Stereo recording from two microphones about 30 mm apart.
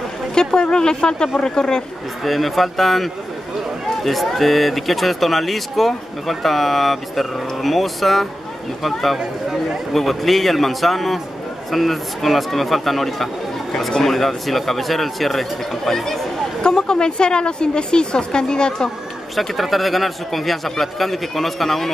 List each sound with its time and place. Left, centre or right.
0.3 s speech: left
2.2 s speech: centre
16.8 s speech: left
19.3 s speech: centre